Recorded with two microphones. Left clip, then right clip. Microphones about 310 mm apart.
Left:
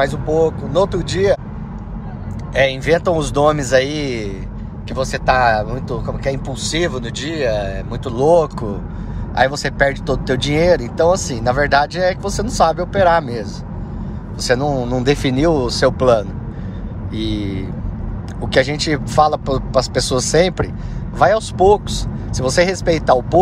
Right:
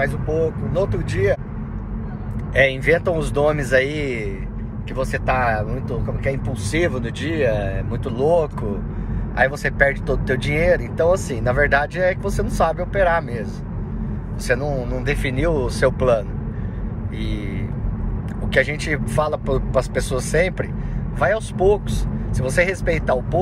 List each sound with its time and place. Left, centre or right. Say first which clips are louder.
0.0 s speech: left 5 dB; centre
2.5 s speech: left 2 dB; centre